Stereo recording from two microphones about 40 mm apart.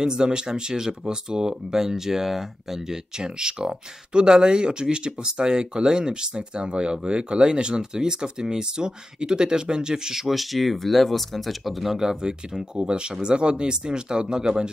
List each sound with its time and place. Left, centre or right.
0.0 s speech: centre